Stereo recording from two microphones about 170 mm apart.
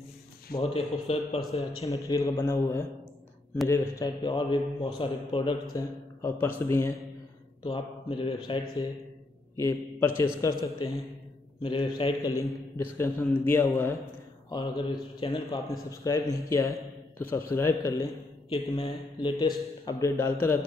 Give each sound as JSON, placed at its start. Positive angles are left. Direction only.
{"t": 0.5, "sound": "speech", "side_deg": 60}
{"t": 1.0, "sound": "a man's voice", "side_deg": 35}
{"t": 1.9, "sound": "a man's voice", "side_deg": 20}
{"t": 5.7, "sound": "a man's voice", "side_deg": 15}
{"t": 7.6, "sound": "a man's voice", "side_deg": 30}
{"t": 11.6, "sound": "a man's voice", "side_deg": 30}
{"t": 12.3, "sound": "a man's voice", "side_deg": 15}
{"t": 14.5, "sound": "a man's voice", "side_deg": 25}
{"t": 15.9, "sound": "a man's voice", "side_deg": 20}
{"t": 18.5, "sound": "a man's voice", "side_deg": 30}